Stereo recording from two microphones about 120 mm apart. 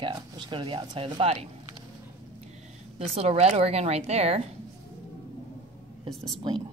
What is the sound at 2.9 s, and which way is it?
A woman's voice, 55° right (ahead or behind).